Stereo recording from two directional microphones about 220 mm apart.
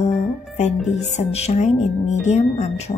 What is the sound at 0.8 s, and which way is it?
Speech, 30° left (ahead or behind).